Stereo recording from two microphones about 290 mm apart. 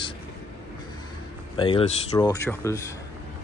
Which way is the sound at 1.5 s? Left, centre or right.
Centre.